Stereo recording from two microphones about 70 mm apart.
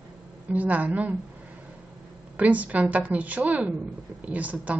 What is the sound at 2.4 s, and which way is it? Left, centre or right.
A woman's voice, right.